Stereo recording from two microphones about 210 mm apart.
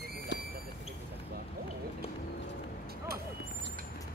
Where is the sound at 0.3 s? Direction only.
55° left (ahead or behind).